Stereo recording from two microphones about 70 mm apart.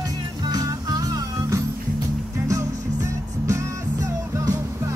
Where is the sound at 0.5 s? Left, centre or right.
Right.